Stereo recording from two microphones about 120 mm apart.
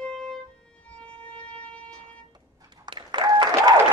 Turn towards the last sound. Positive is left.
turn(degrees=-35)  # may be behind; listen again after turning